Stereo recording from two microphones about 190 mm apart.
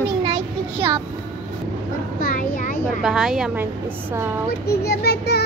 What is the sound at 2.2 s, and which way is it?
Speech, 45° left (ahead or behind).